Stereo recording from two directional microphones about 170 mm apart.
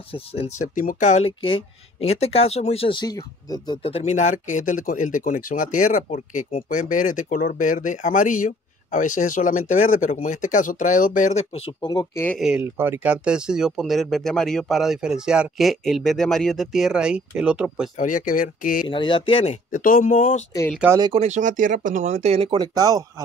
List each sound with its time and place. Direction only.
0.1 s speech: 35° left (ahead or behind)
12.4 s speech: 5° right (ahead or behind)
12.7 s speech: 15° right (ahead or behind)
17.9 s speech: 50° left (ahead or behind)
18.9 s speech: 30° left (ahead or behind)
19.7 s speech: 55° left (ahead or behind)
21.1 s speech: 40° right (ahead or behind); by 23.2 s 20° right (ahead or behind)